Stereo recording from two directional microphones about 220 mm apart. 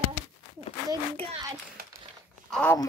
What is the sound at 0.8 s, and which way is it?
Speech, 15° right (ahead or behind).